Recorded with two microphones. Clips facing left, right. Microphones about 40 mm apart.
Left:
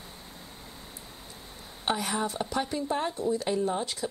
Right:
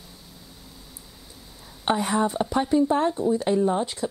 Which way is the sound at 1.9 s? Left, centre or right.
Right.